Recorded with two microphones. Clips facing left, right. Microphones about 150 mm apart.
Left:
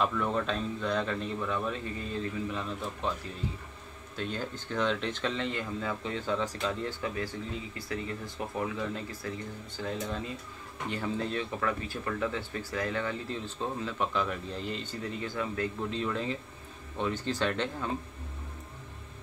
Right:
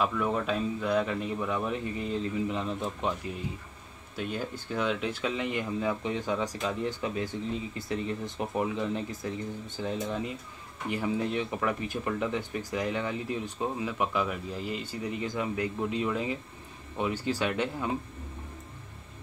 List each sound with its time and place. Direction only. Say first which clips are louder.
0.0 s speech: right 1 dB; 5° right (ahead or behind)
4.2 s speech: right 2 dB; 10° right (ahead or behind)